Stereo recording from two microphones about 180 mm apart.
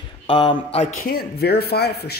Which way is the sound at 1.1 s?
60° left (ahead or behind).